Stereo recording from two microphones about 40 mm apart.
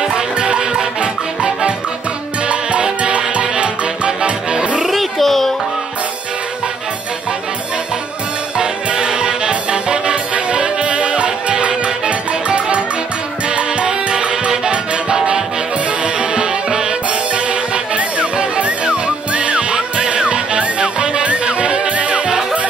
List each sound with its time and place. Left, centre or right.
0.0 s music: right
4.8 s music: centre
8.5 s music: right